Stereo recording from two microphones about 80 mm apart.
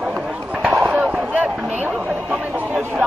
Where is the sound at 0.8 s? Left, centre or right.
Centre.